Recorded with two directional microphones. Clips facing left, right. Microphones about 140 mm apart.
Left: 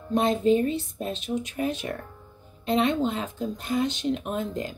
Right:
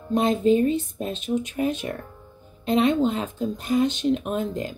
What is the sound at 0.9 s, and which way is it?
Speech, 20° right (ahead or behind).